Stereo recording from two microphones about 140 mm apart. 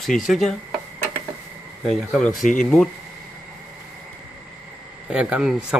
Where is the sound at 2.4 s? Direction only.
70° left (ahead or behind).